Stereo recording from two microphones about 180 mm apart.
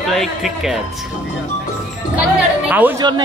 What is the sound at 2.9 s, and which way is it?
Speech, 25° right (ahead or behind).